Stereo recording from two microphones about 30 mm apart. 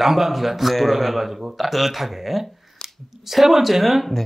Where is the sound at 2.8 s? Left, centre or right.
Centre.